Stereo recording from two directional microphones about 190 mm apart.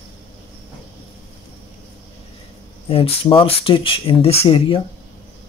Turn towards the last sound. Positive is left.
turn(degrees=30)  # may be behind; listen again after turning